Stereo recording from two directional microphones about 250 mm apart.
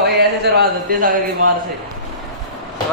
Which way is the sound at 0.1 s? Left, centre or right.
Right.